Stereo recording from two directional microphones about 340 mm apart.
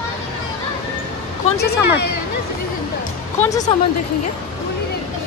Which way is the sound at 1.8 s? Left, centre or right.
Left.